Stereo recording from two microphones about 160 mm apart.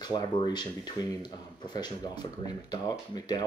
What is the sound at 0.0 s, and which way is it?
Speech, 25° left (ahead or behind).